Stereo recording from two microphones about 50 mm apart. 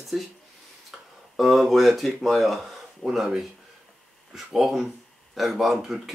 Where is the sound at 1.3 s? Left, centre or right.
Centre.